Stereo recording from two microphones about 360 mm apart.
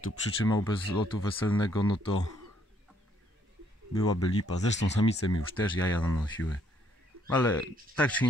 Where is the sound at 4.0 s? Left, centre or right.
Centre.